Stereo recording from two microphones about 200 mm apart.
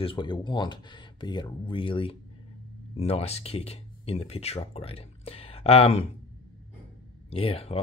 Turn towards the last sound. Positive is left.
turn(degrees=30)  # may be behind; listen again after turning